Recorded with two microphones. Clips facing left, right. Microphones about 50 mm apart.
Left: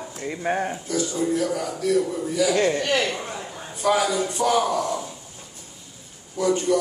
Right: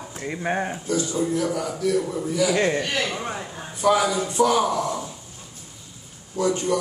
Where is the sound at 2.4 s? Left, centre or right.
Centre.